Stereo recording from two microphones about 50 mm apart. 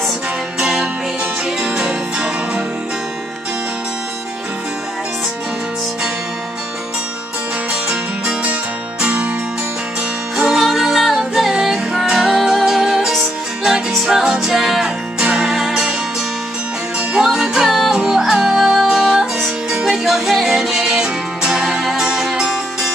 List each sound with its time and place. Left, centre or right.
0.6 s music: centre
9.0 s music: right
10.3 s music: centre
15.1 s music: right
15.4 s music: centre
17.2 s music: centre